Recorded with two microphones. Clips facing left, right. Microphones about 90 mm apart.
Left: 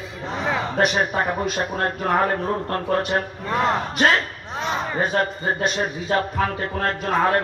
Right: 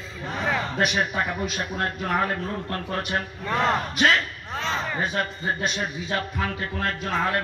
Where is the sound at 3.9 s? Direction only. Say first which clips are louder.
Left 3 dB; 40° left (ahead or behind).